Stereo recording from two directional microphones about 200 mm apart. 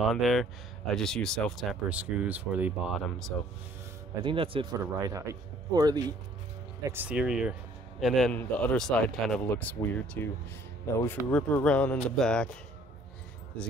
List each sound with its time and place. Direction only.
0.0 s speech: centre (ahead or behind)
4.2 s speech: 25° right (ahead or behind); by 12.4 s 5° left (ahead or behind)
13.5 s speech: 5° left (ahead or behind)